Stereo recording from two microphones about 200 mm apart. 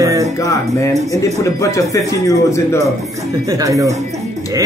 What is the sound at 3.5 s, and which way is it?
Speech, 15° right (ahead or behind).